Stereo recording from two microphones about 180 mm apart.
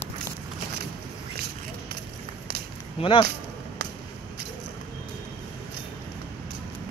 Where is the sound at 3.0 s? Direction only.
30° left (ahead or behind).